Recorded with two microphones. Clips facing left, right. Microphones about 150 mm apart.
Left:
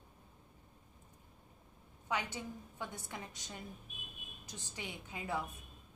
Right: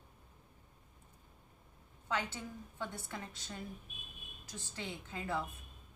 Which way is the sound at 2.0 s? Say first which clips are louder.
Even; 15° left (ahead or behind).